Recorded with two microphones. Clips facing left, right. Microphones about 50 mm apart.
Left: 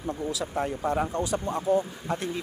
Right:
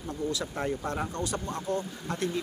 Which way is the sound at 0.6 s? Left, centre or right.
Centre.